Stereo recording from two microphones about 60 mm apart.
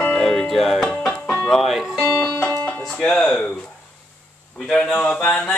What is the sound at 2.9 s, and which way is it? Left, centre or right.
Speech, centre.